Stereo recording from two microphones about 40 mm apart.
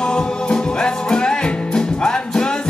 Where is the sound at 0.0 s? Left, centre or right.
Left.